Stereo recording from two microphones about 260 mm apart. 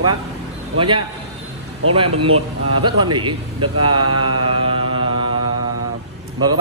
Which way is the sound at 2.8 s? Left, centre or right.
Centre.